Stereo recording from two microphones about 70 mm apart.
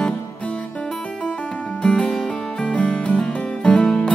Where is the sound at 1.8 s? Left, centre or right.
Centre.